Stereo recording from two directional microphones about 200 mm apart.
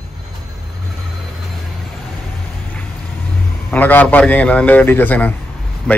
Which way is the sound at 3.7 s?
10° left (ahead or behind).